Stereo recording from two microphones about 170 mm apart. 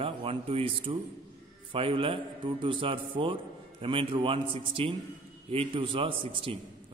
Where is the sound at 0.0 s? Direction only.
35° right (ahead or behind).